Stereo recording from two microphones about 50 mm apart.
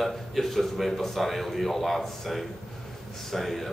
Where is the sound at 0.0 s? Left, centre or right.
Centre.